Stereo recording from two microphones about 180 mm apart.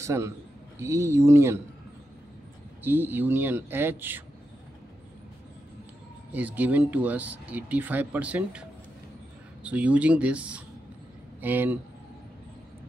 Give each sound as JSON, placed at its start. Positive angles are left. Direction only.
{"t": 0.0, "sound": "a man's voice", "side_deg": -15}
{"t": 2.8, "sound": "speech", "side_deg": -10}
{"t": 6.3, "sound": "speech", "side_deg": -10}